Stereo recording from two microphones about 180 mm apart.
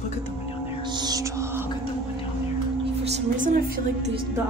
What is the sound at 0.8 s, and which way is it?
Music, 25° right (ahead or behind).